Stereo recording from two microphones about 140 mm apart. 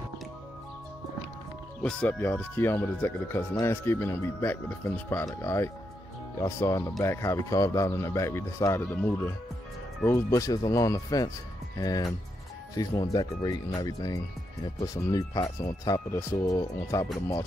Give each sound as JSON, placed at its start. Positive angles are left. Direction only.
{"t": 1.8, "sound": "speech", "side_deg": 10}